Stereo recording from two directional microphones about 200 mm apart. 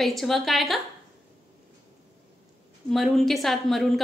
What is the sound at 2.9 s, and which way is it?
A woman's voice, centre (ahead or behind).